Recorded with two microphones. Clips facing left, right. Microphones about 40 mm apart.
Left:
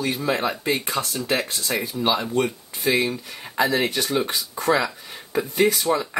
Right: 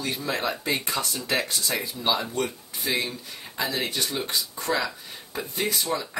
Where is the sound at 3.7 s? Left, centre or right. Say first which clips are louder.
Left 6 dB; left.